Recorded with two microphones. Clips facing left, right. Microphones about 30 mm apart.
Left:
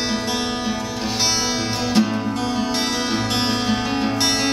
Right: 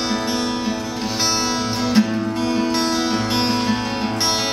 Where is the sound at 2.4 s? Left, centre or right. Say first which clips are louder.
Right 5 dB; centre.